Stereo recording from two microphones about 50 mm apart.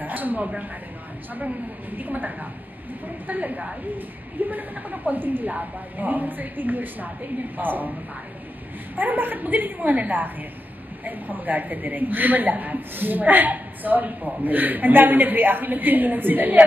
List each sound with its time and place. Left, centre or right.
0.0 s a sound: right
2.0 s a woman's voice: right
8.9 s a woman's voice: right